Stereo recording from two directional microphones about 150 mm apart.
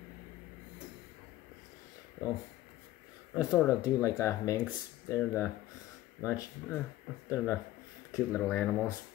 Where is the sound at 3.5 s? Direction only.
20° left (ahead or behind).